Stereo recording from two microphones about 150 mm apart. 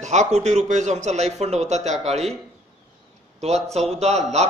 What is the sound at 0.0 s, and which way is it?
A man's voice, 50° right (ahead or behind).